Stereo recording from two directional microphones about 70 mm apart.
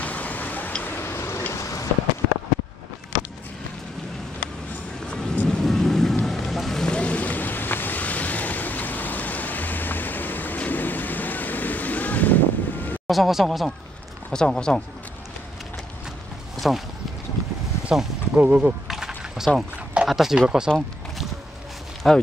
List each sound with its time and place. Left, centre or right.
0.0 s tick-tock: left
1.5 s a sound: left
5.0 s music: centre
5.6 s boat: centre
6.9 s boat: centre
13.0 s speech: centre
14.3 s speech: centre
16.5 s a sound: centre
17.9 s speech: centre
18.3 s speech: right
18.9 s a sound: centre
20.1 s speech: centre
22.0 s speech: centre